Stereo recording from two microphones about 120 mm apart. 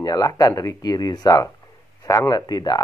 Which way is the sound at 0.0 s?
30° left (ahead or behind).